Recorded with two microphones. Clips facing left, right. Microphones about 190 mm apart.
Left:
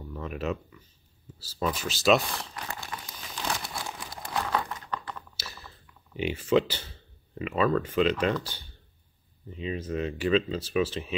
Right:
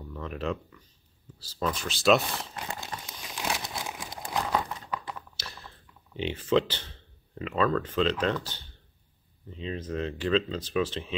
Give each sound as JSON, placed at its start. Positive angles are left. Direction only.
{"t": 0.1, "sound": "speech", "side_deg": 5}
{"t": 2.6, "sound": "a sound", "side_deg": -20}
{"t": 3.3, "sound": "crumpling", "side_deg": -10}
{"t": 3.8, "sound": "a sound", "side_deg": -10}
{"t": 4.1, "sound": "crumpling", "side_deg": -20}
{"t": 5.4, "sound": "chewing", "side_deg": 5}
{"t": 6.1, "sound": "speech", "side_deg": 10}
{"t": 9.5, "sound": "speech", "side_deg": 10}